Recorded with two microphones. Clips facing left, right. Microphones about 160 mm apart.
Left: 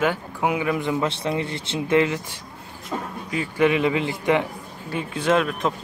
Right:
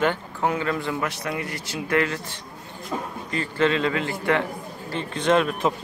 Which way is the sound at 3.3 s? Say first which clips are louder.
Left 2 dB; 10° left (ahead or behind).